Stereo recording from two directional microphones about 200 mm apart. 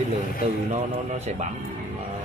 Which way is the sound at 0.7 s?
35° right (ahead or behind).